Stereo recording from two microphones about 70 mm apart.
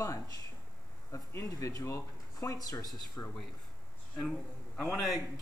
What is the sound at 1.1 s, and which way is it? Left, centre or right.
Speech, left.